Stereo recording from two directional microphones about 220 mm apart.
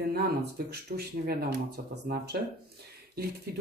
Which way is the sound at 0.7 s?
45° right (ahead or behind).